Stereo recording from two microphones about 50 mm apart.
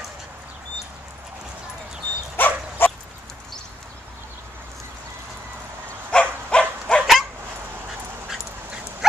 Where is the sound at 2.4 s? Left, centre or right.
Left.